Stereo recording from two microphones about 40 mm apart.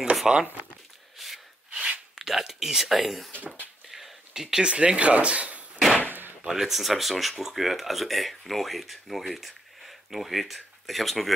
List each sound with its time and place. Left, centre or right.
0.2 s speech: centre
1.1 s gasp: centre
1.7 s a sound: right
2.1 s speech: centre; by 5.7 s right
6.0 s a sound: right
6.4 s speech: centre